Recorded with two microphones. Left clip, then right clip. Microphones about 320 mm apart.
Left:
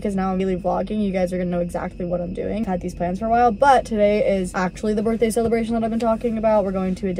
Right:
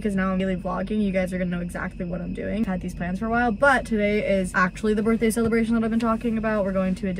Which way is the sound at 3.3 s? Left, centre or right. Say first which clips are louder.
Left 5 dB; left.